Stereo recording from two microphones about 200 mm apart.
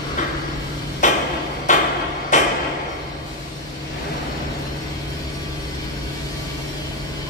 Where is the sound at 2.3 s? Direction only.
40° left (ahead or behind).